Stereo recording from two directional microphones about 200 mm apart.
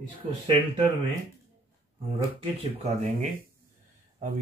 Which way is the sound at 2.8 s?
40° right (ahead or behind).